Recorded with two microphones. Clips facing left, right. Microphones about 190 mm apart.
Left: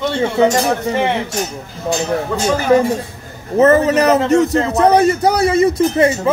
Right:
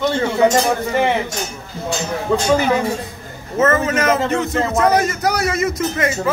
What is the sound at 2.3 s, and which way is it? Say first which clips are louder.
Speech: right 2 dB; 15° right (ahead or behind).